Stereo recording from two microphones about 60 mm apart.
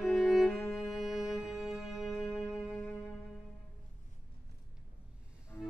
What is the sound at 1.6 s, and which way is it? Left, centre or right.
Music, centre.